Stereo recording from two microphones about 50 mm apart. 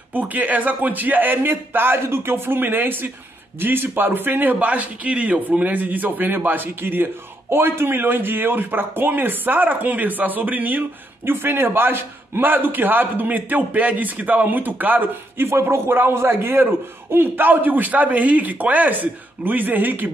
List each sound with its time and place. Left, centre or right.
0.1 s a man's voice: right
11.2 s a man's voice: right
15.3 s a man's voice: right